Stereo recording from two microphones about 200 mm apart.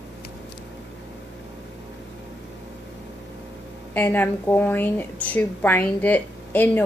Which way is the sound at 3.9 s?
10° left (ahead or behind).